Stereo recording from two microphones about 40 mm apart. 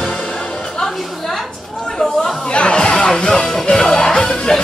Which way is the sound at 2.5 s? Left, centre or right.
Left.